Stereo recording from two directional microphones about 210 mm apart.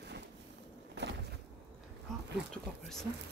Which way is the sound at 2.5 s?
Centre (ahead or behind).